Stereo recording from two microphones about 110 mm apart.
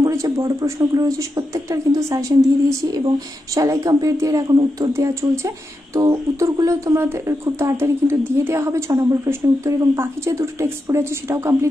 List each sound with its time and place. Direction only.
0.0 s a woman's voice: 30° right (ahead or behind)